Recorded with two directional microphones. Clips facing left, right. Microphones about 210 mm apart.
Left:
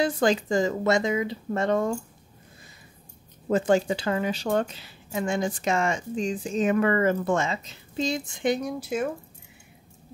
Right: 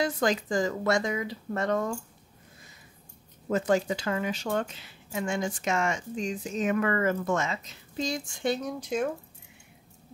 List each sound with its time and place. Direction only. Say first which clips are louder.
0.0 s speech: left 4 dB; 30° left (ahead or behind)
3.4 s speech: left 3 dB; 30° left (ahead or behind); by 9.1 s 5° left (ahead or behind)